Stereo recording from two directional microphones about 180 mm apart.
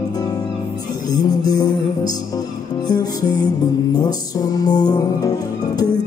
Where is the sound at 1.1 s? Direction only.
20° left (ahead or behind).